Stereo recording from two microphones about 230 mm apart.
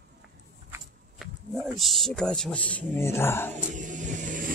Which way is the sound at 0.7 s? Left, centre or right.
Centre.